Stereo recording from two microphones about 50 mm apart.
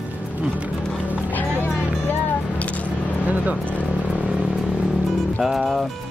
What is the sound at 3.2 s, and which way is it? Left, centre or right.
Vehicle, right.